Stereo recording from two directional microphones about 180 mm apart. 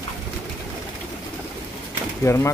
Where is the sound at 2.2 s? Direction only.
15° left (ahead or behind).